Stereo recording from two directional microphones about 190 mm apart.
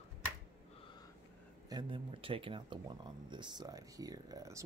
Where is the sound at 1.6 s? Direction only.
25° right (ahead or behind).